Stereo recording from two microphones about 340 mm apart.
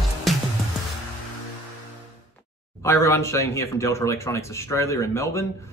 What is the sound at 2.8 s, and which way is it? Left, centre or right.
Speech, centre.